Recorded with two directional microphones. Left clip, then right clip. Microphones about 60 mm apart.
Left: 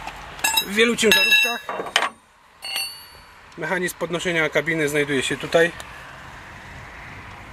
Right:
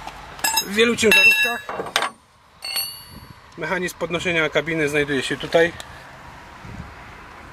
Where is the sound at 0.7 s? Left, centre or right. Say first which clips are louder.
Right 2 dB; right.